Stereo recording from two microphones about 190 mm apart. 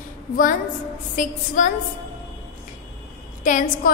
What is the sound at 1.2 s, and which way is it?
Speech, 40° left (ahead or behind).